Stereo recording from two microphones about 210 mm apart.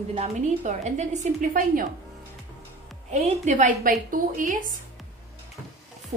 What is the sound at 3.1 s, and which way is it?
A woman's voice, 35° right (ahead or behind).